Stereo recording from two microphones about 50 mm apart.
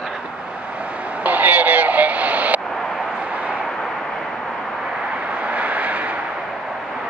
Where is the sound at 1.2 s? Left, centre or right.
Right.